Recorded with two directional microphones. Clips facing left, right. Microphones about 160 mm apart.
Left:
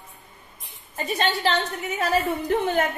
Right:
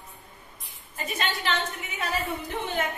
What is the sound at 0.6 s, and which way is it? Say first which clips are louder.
A woman's voice: left 5 dB; 30° left (ahead or behind).